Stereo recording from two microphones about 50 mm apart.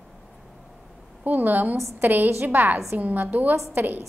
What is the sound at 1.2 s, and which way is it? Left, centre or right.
A woman's voice, right.